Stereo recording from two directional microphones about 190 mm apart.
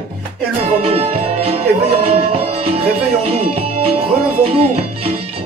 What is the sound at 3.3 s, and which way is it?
Speech, 30° right (ahead or behind).